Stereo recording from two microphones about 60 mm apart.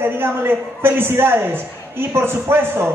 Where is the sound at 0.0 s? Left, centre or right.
Right.